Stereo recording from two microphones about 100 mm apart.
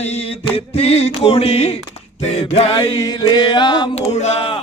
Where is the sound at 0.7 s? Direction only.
90° left.